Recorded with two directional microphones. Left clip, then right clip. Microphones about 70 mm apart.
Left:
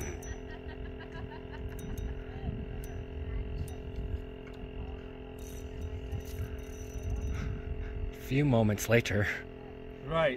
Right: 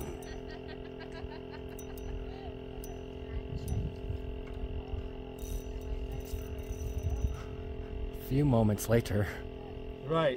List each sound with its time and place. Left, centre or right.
8.3 s speech: centre
10.0 s speech: right